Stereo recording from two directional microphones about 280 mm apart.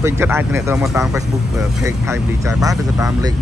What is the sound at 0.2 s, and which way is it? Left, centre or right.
Speech, centre.